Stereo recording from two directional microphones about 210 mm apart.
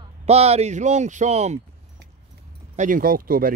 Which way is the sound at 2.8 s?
40° right (ahead or behind).